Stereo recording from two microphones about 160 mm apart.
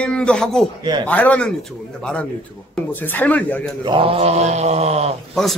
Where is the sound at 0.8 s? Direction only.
25° right (ahead or behind).